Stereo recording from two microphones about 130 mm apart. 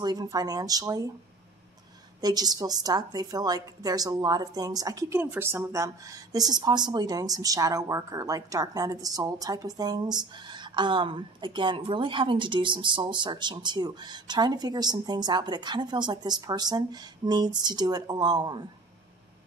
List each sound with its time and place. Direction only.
0.0 s a woman's voice: 30° right (ahead or behind)
2.2 s a woman's voice: 30° right (ahead or behind)
5.2 s a woman's voice: 15° right (ahead or behind); by 18.6 s 35° right (ahead or behind)